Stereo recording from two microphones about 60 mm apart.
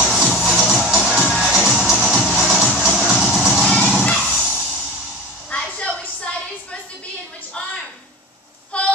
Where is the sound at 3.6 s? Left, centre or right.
Centre.